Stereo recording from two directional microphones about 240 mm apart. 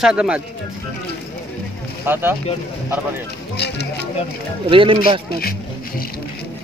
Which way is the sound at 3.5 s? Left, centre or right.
Left.